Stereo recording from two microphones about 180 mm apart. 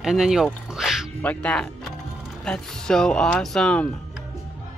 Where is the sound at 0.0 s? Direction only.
Centre (ahead or behind).